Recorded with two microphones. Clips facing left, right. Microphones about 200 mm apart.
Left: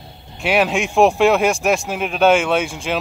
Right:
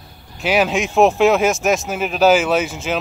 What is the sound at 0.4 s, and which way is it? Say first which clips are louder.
Speech: even; centre (ahead or behind).